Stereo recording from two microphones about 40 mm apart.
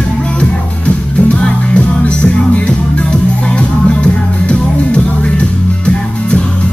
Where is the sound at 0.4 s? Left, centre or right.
Left.